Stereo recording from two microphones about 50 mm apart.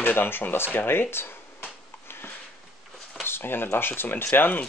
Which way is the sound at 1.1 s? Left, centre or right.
Left.